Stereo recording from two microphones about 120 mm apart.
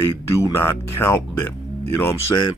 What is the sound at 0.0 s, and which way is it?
Speech, 20° left (ahead or behind).